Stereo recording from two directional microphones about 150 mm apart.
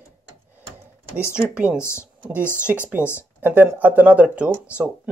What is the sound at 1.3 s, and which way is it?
Speech, 5° right (ahead or behind).